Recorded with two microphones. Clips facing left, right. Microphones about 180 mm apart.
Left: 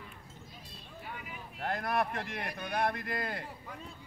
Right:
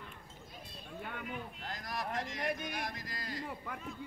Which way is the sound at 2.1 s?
60° left (ahead or behind).